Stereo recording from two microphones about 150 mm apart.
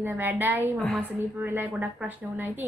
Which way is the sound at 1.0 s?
15° right (ahead or behind).